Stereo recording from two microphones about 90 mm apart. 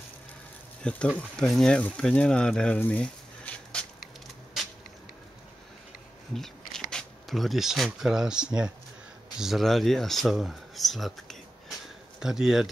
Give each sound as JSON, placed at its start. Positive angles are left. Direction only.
{"t": 0.8, "sound": "speech", "side_deg": 10}
{"t": 2.8, "sound": "a sound", "side_deg": 15}
{"t": 6.3, "sound": "speech", "side_deg": 5}